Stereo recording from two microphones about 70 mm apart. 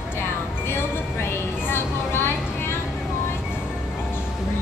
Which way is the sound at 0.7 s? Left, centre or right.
Left.